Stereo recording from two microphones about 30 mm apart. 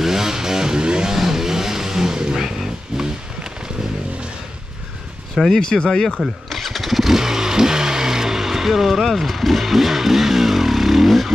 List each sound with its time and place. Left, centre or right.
0.0 s vehicle: centre
1.1 s vehicle: centre
2.1 s vehicle: right
2.4 s a sound: centre
5.6 s speech: left
6.2 s motorcycle: centre
9.1 s vehicle: centre